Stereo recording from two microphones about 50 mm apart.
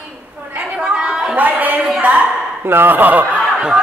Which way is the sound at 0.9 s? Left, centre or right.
Centre.